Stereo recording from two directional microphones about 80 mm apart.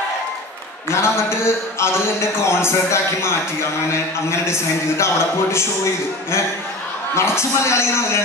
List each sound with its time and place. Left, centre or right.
0.8 s speech: left
7.2 s speech: left